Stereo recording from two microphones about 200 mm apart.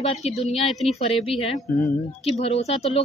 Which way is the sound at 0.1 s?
30° left (ahead or behind).